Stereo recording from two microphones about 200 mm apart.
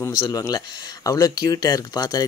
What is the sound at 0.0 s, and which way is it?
Speech, 20° left (ahead or behind).